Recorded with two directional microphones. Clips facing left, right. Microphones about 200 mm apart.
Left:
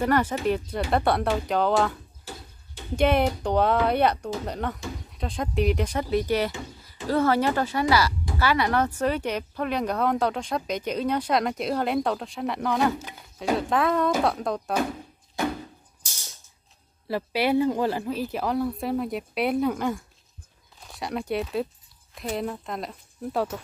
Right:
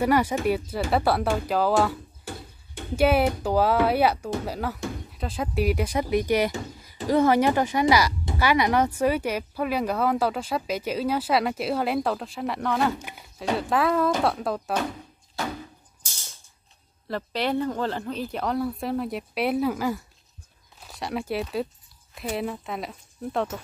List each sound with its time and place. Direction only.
0.0 s speech: 10° right (ahead or behind)
3.0 s speech: 5° right (ahead or behind)
17.1 s speech: 10° left (ahead or behind)